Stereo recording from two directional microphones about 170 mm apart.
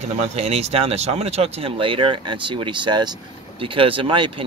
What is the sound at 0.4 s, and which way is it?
Speech, 40° right (ahead or behind).